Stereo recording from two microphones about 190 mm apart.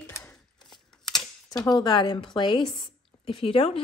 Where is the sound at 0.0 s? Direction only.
10° left (ahead or behind).